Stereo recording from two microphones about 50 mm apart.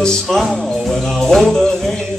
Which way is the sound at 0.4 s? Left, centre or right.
Centre.